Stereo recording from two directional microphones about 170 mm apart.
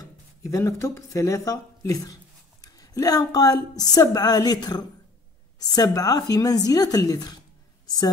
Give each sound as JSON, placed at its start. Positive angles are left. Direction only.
{"t": 0.0, "sound": "a woman's voice", "side_deg": 20}